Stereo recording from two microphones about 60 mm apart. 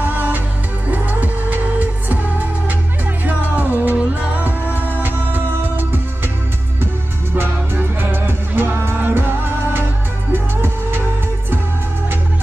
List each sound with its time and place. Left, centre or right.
0.0 s music: right
3.3 s music: right
7.3 s music: right
10.3 s music: right